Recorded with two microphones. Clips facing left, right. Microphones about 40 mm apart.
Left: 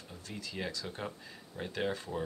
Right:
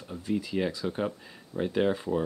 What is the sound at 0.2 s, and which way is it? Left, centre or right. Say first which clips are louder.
Speech: right 11 dB; centre.